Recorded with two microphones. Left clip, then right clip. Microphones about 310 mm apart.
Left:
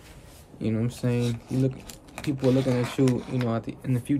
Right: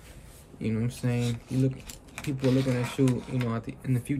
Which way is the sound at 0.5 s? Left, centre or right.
Centre.